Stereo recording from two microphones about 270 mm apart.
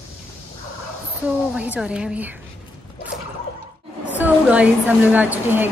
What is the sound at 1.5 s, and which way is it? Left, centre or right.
Speech, centre.